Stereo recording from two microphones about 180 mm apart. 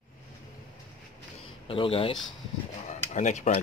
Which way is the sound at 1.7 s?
30° left (ahead or behind).